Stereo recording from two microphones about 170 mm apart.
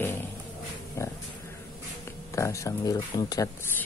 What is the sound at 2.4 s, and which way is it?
Speech, 20° left (ahead or behind).